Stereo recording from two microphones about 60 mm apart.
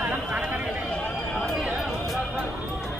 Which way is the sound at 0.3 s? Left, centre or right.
Centre.